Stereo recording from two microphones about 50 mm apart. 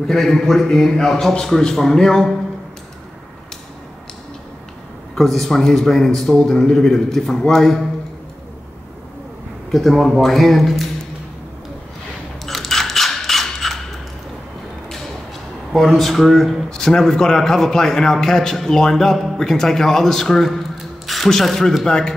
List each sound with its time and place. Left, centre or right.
0.1 s a man's voice: centre
5.1 s a man's voice: centre
9.7 s speech: centre
12.4 s coin: centre
15.9 s a man's voice: centre